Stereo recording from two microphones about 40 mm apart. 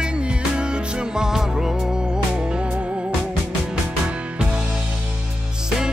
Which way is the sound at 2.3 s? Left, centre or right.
Right.